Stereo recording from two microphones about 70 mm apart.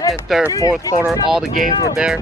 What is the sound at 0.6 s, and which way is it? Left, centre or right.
Speech, left.